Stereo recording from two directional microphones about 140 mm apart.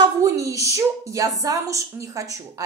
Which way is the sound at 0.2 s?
25° right (ahead or behind).